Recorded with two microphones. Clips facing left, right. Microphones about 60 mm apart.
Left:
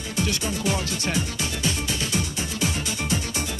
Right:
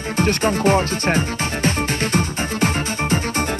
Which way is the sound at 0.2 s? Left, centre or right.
Right.